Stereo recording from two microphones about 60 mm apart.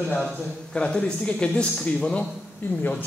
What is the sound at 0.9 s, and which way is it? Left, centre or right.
Speech, centre.